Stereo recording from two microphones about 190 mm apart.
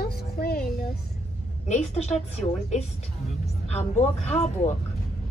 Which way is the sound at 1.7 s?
35° left (ahead or behind).